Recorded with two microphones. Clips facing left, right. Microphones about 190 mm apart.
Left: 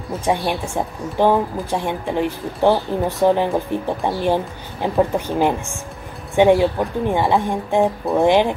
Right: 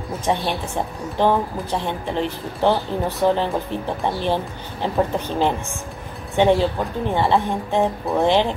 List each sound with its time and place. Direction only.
0.2 s a woman's voice: 10° left (ahead or behind)